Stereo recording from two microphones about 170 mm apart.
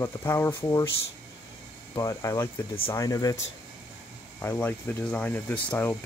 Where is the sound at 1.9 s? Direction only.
20° left (ahead or behind).